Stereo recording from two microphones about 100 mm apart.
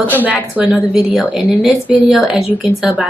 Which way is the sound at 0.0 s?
15° right (ahead or behind).